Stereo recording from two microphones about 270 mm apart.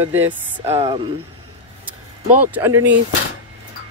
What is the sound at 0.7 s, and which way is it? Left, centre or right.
Speech, right.